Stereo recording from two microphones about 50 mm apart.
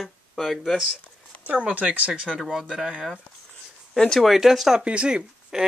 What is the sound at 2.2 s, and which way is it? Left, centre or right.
Speech, centre.